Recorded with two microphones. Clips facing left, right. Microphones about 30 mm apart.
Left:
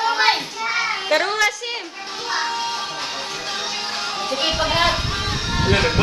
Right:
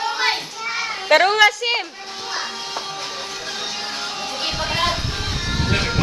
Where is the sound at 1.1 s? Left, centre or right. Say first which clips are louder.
Right 7 dB; right.